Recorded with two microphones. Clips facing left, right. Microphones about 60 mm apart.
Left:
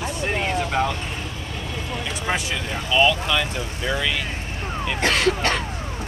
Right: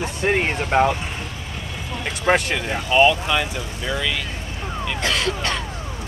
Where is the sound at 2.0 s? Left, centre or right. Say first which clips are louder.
Right 8 dB; right.